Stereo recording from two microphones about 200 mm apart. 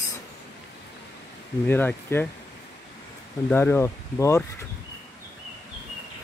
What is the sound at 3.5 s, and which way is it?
Speech, 10° left (ahead or behind).